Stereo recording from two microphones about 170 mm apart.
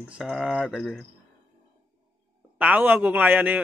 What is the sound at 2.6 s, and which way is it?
A man's voice, 10° right (ahead or behind).